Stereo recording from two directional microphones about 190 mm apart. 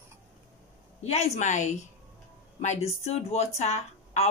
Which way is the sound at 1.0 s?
35° left (ahead or behind).